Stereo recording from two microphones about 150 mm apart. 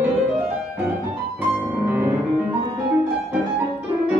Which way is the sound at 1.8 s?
15° right (ahead or behind).